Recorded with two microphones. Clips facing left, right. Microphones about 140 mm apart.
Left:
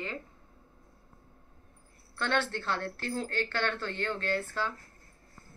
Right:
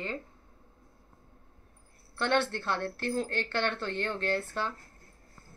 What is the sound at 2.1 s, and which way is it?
A woman's voice, 15° right (ahead or behind).